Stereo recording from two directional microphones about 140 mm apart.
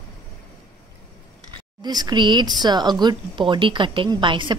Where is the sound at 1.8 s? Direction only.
30° right (ahead or behind).